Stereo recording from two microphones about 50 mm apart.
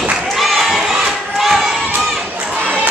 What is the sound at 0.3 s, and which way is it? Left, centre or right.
Crowd, centre.